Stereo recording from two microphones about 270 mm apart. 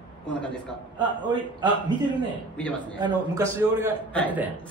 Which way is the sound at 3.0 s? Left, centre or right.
Centre.